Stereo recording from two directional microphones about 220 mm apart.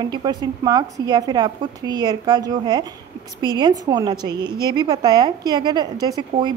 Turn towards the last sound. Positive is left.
turn(degrees=-20)  # may be behind; listen again after turning